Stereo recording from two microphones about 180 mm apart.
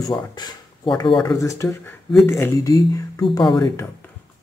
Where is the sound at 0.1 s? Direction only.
20° left (ahead or behind).